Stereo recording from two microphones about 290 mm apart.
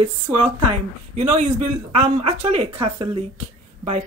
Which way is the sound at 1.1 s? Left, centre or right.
Right.